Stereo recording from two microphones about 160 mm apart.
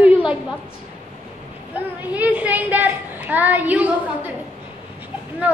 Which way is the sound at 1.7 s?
10° right (ahead or behind).